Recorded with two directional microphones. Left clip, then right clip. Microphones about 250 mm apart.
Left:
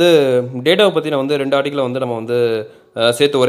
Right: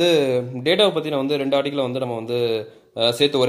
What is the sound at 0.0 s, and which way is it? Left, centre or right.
A man's voice, centre.